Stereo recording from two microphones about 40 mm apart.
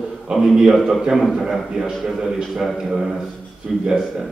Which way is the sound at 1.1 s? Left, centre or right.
Centre.